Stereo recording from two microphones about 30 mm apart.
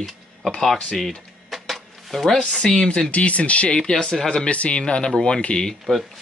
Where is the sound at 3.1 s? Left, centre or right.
Left.